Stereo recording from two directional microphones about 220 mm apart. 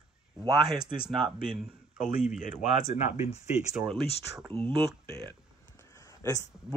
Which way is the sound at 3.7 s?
Centre (ahead or behind).